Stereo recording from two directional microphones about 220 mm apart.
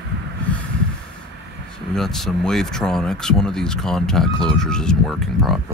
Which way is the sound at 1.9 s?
Centre (ahead or behind).